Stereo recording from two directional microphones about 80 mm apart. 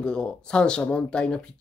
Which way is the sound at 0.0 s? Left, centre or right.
Centre.